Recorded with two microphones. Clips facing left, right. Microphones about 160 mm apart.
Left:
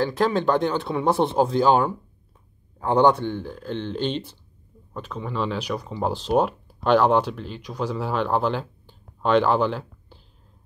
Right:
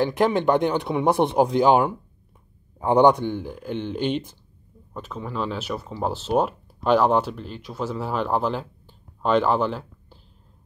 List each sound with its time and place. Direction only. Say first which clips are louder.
0.0 s speech: right 1 dB; 20° right (ahead or behind); by 10.1 s centre (ahead or behind)